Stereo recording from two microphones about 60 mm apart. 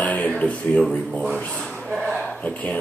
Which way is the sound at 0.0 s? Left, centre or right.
Left.